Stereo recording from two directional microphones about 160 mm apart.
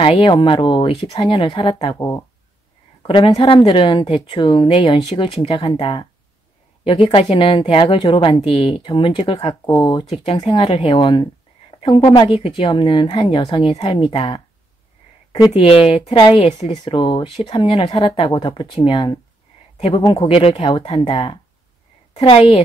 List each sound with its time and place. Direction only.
0.0 s speech: 35° left (ahead or behind)
3.1 s speech: 30° left (ahead or behind)
15.5 s speech: 35° left (ahead or behind)